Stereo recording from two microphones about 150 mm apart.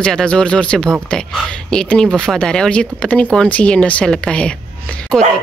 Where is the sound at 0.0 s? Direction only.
5° left (ahead or behind).